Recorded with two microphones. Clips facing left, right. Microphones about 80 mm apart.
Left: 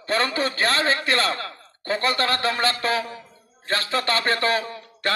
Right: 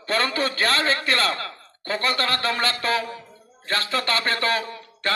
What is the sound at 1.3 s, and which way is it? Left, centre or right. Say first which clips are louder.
A man's voice: left 1 dB; left.